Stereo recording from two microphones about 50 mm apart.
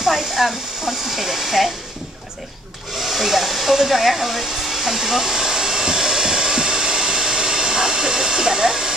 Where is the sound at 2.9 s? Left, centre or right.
Centre.